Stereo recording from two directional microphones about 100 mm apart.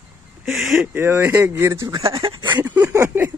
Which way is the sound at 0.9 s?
20° right (ahead or behind).